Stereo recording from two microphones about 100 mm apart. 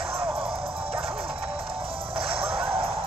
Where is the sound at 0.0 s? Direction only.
70° right (ahead or behind).